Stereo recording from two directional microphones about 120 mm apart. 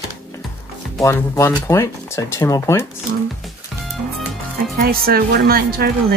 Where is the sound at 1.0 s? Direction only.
25° left (ahead or behind).